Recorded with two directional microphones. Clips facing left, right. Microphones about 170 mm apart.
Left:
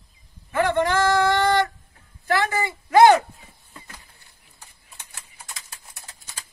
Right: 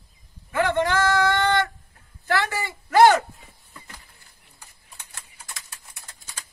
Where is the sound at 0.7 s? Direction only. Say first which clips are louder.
Left 2 dB; 15° left (ahead or behind).